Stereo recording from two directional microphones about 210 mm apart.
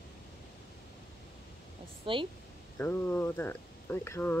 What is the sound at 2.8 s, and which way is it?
Speech, 10° left (ahead or behind).